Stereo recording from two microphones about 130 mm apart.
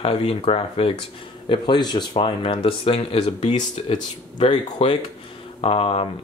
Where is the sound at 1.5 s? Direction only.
35° left (ahead or behind).